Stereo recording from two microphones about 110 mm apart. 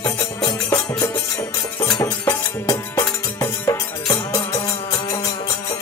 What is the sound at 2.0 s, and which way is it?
Music, 35° left (ahead or behind).